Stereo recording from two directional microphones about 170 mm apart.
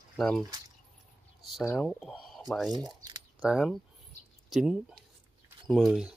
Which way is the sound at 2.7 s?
25° right (ahead or behind).